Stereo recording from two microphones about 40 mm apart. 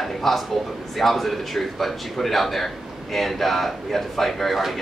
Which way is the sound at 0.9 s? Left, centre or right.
Centre.